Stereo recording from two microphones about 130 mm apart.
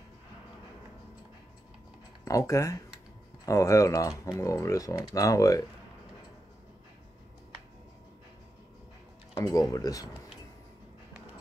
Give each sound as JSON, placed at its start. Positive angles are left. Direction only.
{"t": 2.2, "sound": "speech", "side_deg": 25}
{"t": 9.3, "sound": "speech", "side_deg": 25}